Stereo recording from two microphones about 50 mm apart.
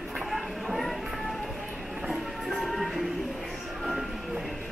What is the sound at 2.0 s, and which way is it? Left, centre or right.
Music, centre.